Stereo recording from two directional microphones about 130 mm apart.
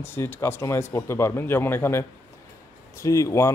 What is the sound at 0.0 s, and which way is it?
Speech, 15° left (ahead or behind).